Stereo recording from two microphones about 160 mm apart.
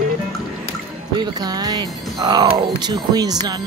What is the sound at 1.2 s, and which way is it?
Speech, 25° right (ahead or behind).